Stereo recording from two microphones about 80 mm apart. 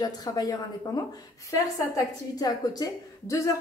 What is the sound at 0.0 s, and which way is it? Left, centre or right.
Speech, left.